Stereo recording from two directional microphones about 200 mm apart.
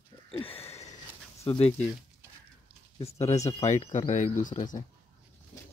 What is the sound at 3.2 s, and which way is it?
Speech, 35° left (ahead or behind).